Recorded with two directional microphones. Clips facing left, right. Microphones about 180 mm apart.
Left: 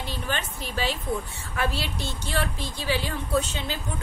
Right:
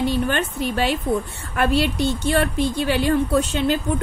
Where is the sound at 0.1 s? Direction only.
60° right (ahead or behind).